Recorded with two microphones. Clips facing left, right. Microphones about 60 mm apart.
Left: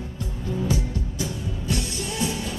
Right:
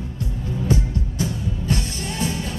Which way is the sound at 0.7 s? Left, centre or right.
Right.